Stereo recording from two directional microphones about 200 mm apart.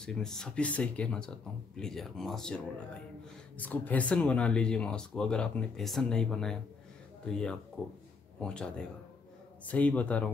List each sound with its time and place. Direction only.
0.0 s speech: 5° left (ahead or behind)